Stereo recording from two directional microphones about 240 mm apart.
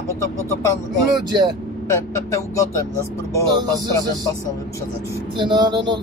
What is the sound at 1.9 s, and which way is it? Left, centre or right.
Speech, centre.